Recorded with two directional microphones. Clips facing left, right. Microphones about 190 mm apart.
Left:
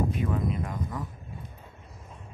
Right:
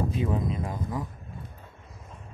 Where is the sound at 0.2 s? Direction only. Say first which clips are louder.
Right 1 dB; 25° right (ahead or behind).